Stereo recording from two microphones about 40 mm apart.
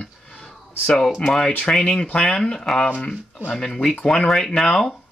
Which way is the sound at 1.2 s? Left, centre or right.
Centre.